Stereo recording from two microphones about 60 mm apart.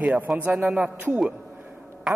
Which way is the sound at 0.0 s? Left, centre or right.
Right.